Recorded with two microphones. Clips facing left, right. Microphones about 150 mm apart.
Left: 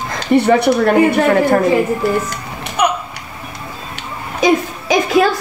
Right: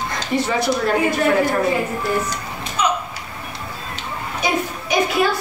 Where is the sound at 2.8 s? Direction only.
65° left (ahead or behind).